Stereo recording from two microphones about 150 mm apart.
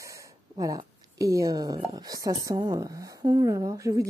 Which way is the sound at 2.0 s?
25° right (ahead or behind).